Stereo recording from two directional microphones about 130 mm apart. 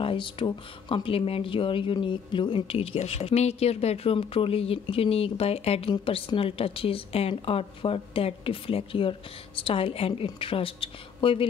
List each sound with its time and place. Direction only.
0.0 s speech: 40° left (ahead or behind)